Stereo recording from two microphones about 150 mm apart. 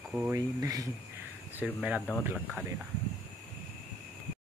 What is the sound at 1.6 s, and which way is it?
Speech, 5° right (ahead or behind).